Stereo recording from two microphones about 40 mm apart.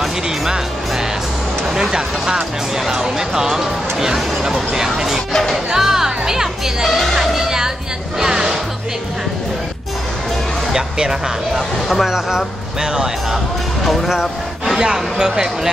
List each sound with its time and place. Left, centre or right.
1.9 s speech: centre
7.3 s music: centre
10.7 s speech: centre
14.8 s speech: centre